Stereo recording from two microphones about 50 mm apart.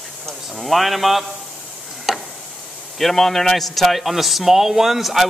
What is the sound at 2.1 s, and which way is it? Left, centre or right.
Stir, centre.